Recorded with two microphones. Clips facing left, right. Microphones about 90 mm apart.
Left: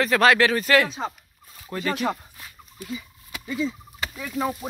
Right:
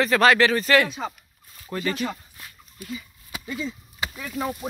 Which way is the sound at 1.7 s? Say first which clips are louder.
Even; centre (ahead or behind).